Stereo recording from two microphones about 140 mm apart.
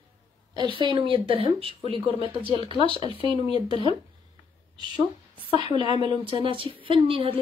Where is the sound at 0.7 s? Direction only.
40° right (ahead or behind).